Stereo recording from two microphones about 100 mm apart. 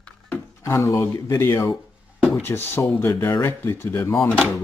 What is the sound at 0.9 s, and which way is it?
Speech, 30° left (ahead or behind).